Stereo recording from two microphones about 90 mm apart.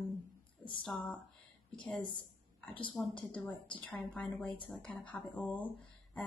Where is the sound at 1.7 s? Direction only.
15° left (ahead or behind).